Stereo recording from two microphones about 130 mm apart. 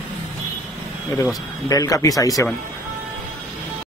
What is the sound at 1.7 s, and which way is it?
Speech, 25° left (ahead or behind).